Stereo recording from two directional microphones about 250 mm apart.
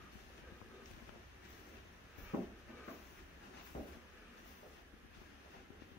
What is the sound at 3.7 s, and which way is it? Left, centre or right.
Vehicle, left.